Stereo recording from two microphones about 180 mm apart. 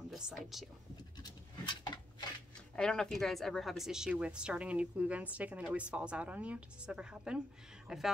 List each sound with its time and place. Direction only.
0.1 s speech: centre (ahead or behind)
1.2 s patter: 25° left (ahead or behind)
2.7 s a woman's voice: 5° left (ahead or behind)